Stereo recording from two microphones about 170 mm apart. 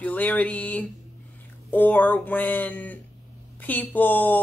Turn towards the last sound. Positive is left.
turn(degrees=10)  # may be behind; listen again after turning